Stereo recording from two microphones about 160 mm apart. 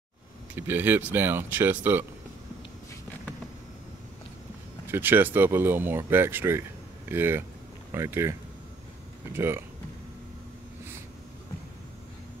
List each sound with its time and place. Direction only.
0.6 s speech: 10° right (ahead or behind)
4.8 s speech: 15° right (ahead or behind)